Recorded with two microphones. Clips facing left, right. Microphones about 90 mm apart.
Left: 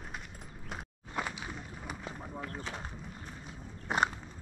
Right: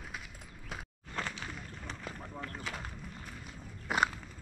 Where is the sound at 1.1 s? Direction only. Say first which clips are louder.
Left 2 dB; 15° left (ahead or behind).